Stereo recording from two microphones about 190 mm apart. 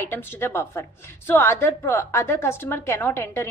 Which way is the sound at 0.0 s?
10° left (ahead or behind).